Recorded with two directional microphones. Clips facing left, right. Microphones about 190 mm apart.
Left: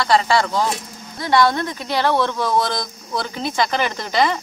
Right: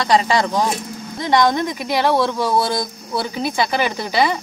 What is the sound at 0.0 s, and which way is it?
Speech, 15° right (ahead or behind).